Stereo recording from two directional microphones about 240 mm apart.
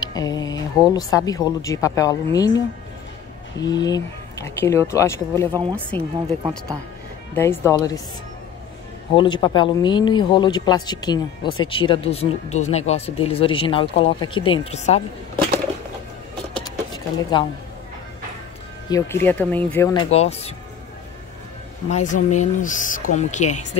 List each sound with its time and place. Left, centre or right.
0.0 s speech: centre
3.6 s speech: centre
5.5 s speech: centre
5.9 s speech: centre
7.3 s speech: centre
9.1 s speech: centre
16.9 s speech: centre
18.9 s speech: centre
21.8 s speech: left